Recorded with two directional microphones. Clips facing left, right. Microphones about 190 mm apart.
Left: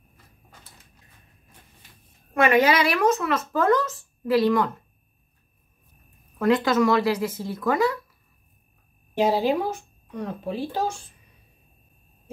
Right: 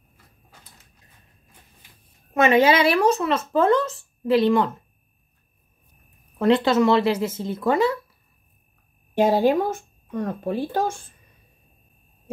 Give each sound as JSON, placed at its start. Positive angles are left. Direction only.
{"t": 2.3, "sound": "speech", "side_deg": -25}
{"t": 6.3, "sound": "speech", "side_deg": -30}
{"t": 9.2, "sound": "speech", "side_deg": -50}